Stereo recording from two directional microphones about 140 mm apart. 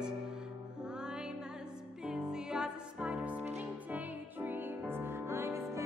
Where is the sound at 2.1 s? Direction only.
5° right (ahead or behind).